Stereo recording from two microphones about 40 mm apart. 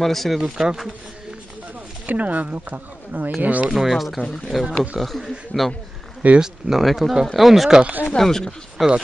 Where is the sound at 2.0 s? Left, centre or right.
Right.